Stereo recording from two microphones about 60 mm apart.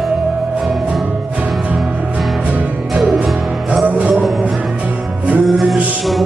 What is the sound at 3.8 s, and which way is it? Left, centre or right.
Music, right.